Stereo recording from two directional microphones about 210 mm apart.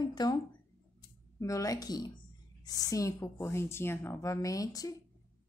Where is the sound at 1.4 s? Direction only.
15° left (ahead or behind).